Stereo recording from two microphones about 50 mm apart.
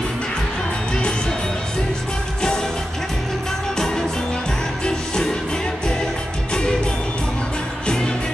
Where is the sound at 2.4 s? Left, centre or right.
Centre.